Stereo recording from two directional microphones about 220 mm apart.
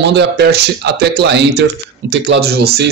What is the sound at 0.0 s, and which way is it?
Speech, 50° right (ahead or behind).